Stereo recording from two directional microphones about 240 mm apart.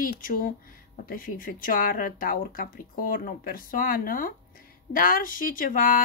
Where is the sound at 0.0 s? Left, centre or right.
Left.